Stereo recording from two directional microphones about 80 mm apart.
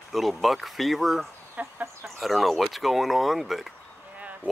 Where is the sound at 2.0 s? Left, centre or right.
Centre.